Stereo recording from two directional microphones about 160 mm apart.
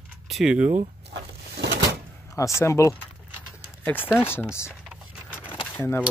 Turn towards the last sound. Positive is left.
turn(degrees=15)  # may be behind; listen again after turning